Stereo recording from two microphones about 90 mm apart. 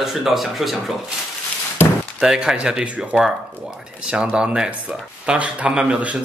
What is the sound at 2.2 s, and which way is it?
A man's voice, 5° right (ahead or behind).